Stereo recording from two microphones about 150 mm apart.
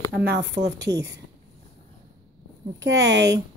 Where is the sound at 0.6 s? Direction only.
50° right (ahead or behind).